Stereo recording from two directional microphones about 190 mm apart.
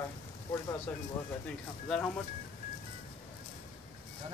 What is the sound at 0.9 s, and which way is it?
Speech, 10° left (ahead or behind).